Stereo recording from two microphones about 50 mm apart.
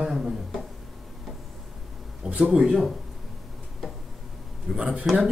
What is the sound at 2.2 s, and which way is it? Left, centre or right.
Speech, right.